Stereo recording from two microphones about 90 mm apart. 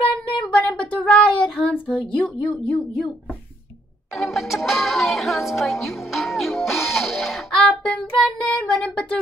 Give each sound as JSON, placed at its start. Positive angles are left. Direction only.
{"t": 0.4, "sound": "child singing", "side_deg": 10}
{"t": 2.0, "sound": "speech", "side_deg": 15}
{"t": 4.1, "sound": "speech", "side_deg": 0}
{"t": 6.9, "sound": "child singing", "side_deg": 0}